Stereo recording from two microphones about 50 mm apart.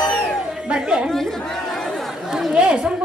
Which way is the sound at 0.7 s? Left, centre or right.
Centre.